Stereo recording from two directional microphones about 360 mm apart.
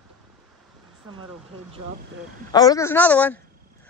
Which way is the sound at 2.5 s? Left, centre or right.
Centre.